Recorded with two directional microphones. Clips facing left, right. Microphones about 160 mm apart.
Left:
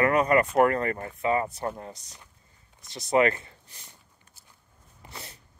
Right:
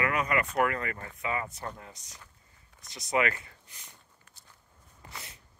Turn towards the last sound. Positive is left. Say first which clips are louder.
# left 3 dB
turn(degrees=30)  # may be behind; listen again after turning